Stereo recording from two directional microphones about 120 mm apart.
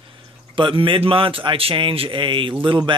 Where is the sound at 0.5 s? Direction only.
45° right (ahead or behind).